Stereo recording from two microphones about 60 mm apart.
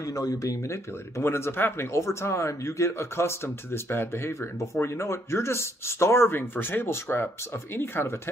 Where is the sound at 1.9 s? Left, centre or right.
Left.